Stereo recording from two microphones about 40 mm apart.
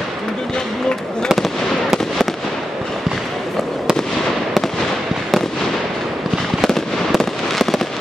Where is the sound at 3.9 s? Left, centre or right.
Right.